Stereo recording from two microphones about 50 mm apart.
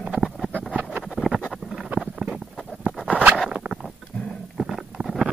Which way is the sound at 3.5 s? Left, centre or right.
Centre.